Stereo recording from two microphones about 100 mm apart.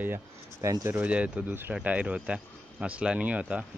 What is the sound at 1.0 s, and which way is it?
Speech, 15° right (ahead or behind).